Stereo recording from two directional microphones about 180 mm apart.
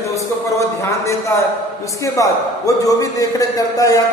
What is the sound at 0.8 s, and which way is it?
A man's voice, 15° left (ahead or behind).